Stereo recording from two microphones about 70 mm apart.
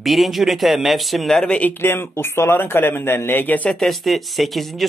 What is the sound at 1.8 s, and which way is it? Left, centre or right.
Speech, left.